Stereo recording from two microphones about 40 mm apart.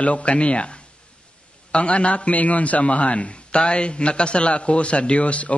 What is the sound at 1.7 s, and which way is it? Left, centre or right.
A man's voice, left.